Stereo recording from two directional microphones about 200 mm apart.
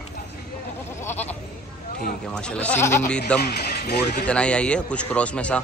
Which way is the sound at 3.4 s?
55° left (ahead or behind).